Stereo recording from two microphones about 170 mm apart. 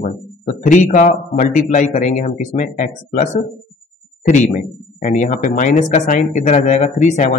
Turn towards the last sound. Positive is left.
turn(degrees=45)  # may be behind; listen again after turning